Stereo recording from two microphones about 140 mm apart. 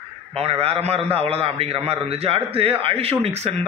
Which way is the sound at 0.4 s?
45° right (ahead or behind).